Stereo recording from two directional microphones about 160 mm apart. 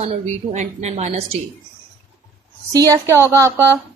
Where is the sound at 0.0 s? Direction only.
45° right (ahead or behind).